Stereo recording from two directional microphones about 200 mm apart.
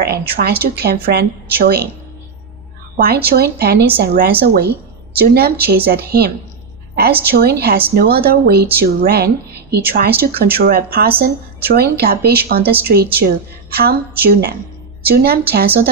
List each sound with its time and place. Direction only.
0.0 s a woman's voice: 50° right (ahead or behind)
3.0 s a woman's voice: 50° right (ahead or behind)